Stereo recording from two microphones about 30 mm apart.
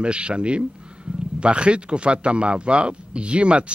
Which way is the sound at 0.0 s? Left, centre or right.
Right.